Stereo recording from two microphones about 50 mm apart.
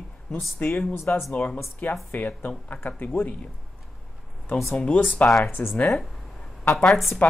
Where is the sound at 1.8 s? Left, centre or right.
Left.